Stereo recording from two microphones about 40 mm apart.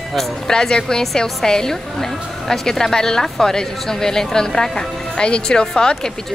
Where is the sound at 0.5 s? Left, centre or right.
Centre.